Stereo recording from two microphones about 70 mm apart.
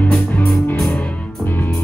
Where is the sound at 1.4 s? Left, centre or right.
Left.